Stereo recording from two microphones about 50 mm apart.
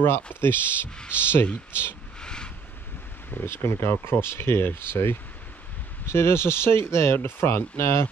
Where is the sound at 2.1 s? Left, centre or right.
Centre.